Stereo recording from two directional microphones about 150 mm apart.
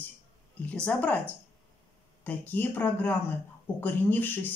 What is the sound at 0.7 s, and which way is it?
Speech, 10° left (ahead or behind).